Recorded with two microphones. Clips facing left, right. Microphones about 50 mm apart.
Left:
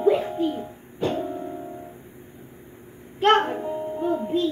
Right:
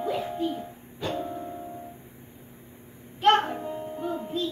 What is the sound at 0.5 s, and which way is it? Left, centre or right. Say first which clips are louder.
Bird: left 3 dB; left.